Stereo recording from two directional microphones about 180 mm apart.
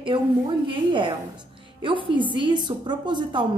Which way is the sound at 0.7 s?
25° right (ahead or behind).